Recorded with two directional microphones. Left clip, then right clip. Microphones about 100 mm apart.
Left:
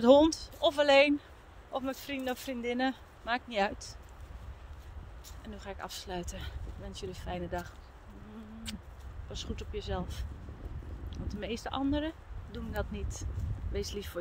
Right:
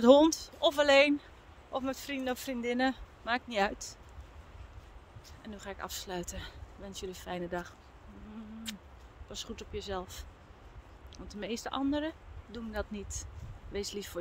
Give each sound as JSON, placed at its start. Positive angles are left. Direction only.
{"t": 0.0, "sound": "speech", "side_deg": -45}
{"t": 5.4, "sound": "speech", "side_deg": -35}